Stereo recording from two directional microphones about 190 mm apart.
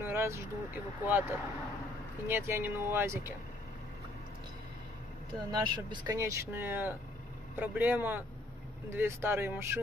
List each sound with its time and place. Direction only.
0.0 s vehicle: 15° right (ahead or behind)
1.0 s speech: 10° right (ahead or behind)
5.5 s speech: 20° right (ahead or behind)